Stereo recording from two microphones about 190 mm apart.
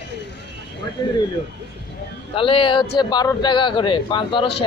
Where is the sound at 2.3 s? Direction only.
30° left (ahead or behind).